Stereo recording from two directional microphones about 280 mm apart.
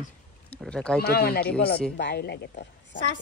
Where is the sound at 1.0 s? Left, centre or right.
Left.